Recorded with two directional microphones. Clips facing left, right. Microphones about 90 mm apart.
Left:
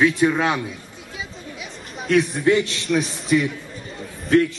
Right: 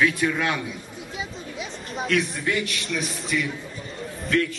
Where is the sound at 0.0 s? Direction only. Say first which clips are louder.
Left 5 dB; 25° left (ahead or behind).